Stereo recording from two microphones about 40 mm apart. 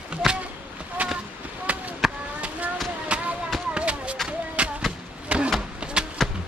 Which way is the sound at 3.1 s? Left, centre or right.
Right.